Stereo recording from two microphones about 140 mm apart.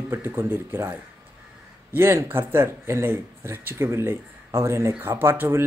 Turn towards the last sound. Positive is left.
turn(degrees=-15)  # may be behind; listen again after turning